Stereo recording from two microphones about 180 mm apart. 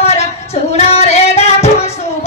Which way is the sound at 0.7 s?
35° left (ahead or behind).